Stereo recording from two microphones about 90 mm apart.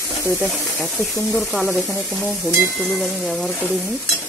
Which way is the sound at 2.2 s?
25° right (ahead or behind).